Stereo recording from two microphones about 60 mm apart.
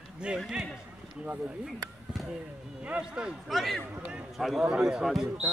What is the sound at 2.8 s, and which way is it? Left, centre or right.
Speech, centre.